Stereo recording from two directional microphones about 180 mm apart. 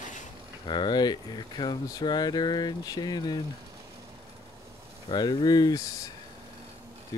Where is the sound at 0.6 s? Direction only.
25° left (ahead or behind).